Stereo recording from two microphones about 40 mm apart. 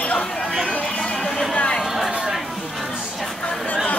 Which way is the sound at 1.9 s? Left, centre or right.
Centre.